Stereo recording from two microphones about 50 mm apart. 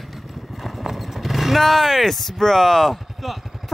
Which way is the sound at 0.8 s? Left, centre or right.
Centre.